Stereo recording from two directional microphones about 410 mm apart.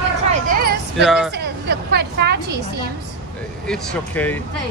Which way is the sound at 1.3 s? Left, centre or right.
Right.